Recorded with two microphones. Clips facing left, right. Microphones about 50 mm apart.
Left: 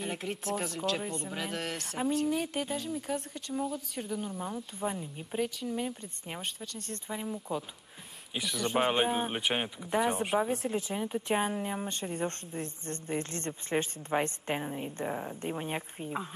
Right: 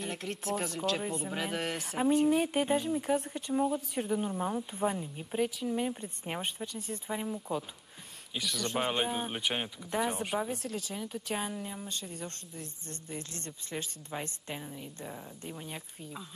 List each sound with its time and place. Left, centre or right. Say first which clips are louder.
0.0 s speech: left 1 dB; centre
8.4 s speech: left 3 dB; centre; by 16.3 s left